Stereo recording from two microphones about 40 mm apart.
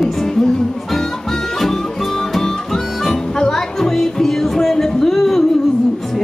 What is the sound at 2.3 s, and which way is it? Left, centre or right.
Harmonica, centre.